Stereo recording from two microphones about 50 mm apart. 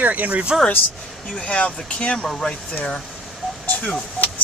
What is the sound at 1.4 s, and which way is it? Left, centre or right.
Speech, left.